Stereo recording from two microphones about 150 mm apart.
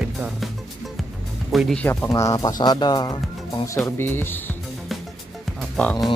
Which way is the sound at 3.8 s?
15° left (ahead or behind).